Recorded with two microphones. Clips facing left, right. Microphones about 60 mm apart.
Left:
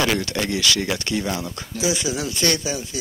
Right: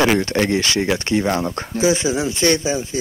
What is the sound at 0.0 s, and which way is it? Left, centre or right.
Speech, right.